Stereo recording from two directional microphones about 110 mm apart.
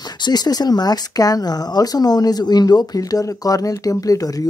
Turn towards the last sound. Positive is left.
turn(degrees=35)  # may be behind; listen again after turning